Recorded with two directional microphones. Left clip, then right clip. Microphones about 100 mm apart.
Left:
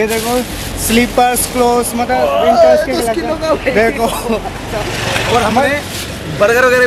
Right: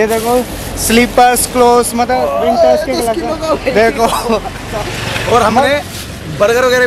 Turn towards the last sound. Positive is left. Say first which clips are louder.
# even
turn(degrees=0)  # may be behind; listen again after turning